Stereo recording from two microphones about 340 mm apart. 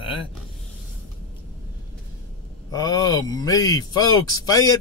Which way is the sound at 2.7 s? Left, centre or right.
Centre.